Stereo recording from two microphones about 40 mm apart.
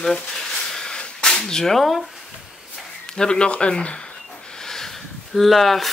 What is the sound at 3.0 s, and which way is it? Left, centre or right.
Speech, centre.